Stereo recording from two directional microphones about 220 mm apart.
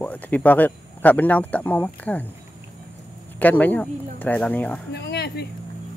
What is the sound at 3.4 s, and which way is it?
Speech, 5° left (ahead or behind).